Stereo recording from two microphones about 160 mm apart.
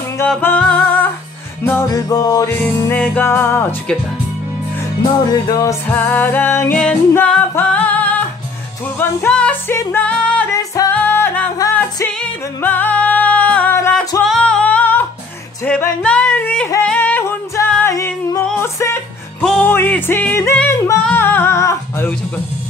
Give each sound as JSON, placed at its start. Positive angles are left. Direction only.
{"t": 0.3, "sound": "music", "side_deg": 10}
{"t": 3.0, "sound": "music", "side_deg": 15}
{"t": 5.3, "sound": "music", "side_deg": 20}
{"t": 10.5, "sound": "music", "side_deg": 20}
{"t": 14.2, "sound": "singing", "side_deg": 5}
{"t": 15.6, "sound": "a sound", "side_deg": 10}
{"t": 16.8, "sound": "music", "side_deg": 10}
{"t": 17.9, "sound": "singing", "side_deg": 20}
{"t": 18.6, "sound": "music", "side_deg": 15}
{"t": 19.4, "sound": "music", "side_deg": 5}